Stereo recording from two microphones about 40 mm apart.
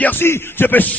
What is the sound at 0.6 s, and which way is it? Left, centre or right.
Speech, left.